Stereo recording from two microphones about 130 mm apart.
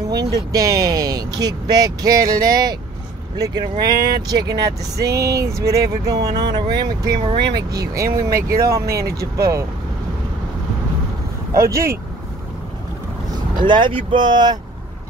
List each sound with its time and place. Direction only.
0.1 s speech: 30° right (ahead or behind)
11.5 s speech: 20° right (ahead or behind)
13.6 s speech: 40° right (ahead or behind)